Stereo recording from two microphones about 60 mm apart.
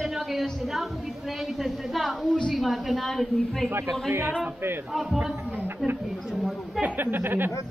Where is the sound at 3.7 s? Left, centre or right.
Right.